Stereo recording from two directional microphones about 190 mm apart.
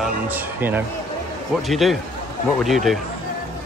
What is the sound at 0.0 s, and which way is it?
Speech, 10° right (ahead or behind).